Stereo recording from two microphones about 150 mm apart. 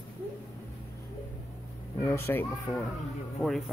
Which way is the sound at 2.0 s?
15° left (ahead or behind).